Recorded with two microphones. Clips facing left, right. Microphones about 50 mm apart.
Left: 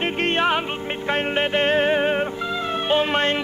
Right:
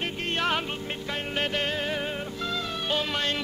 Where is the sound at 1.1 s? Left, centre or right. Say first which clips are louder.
Left 8 dB; left.